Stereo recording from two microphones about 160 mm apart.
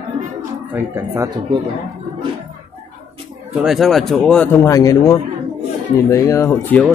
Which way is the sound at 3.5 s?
Centre (ahead or behind).